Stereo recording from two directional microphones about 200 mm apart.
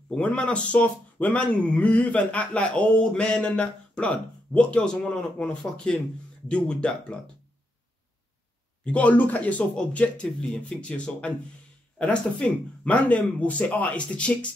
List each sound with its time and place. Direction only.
0.1 s speech: 5° left (ahead or behind)
8.8 s speech: 5° left (ahead or behind)